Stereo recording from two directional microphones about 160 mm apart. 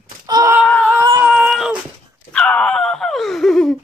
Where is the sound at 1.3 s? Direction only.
5° right (ahead or behind).